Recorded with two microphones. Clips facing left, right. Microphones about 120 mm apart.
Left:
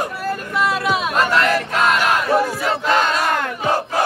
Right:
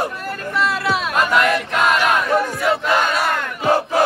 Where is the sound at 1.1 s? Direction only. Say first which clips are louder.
Right 1 dB; centre (ahead or behind).